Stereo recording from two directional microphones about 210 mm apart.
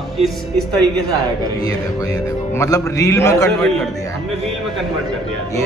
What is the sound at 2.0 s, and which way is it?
A man's voice, 15° left (ahead or behind).